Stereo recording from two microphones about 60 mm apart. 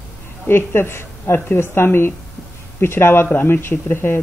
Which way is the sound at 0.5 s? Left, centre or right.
Left.